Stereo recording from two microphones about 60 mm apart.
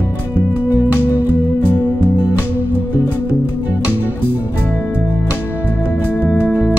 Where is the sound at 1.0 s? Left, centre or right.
Right.